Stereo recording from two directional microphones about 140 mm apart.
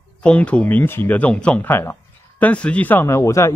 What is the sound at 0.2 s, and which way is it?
Speech, 10° left (ahead or behind).